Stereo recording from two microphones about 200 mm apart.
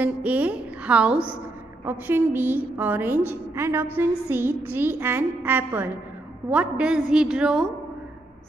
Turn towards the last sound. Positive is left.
turn(degrees=0)  # may be behind; listen again after turning